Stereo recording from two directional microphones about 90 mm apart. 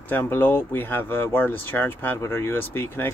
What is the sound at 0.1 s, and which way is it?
Speech, 20° left (ahead or behind).